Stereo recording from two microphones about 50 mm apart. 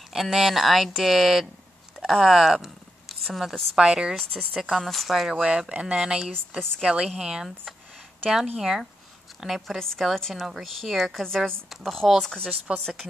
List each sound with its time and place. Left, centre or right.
0.1 s speech: centre
2.0 s a sound: centre
3.7 s speech: centre
4.6 s speech: centre
5.4 s a woman's voice: centre
10.1 s a woman's voice: centre
11.2 s a woman's voice: centre
12.7 s speech: centre